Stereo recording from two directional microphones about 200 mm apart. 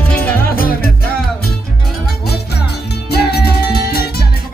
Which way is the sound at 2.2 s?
55° left (ahead or behind).